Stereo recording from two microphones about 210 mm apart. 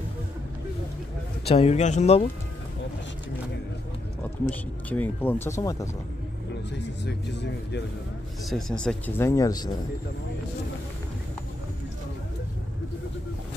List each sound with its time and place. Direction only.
1.4 s speech: 30° left (ahead or behind)
4.5 s speech: 10° left (ahead or behind)
6.7 s speech: 55° left (ahead or behind)
8.5 s speech: centre (ahead or behind)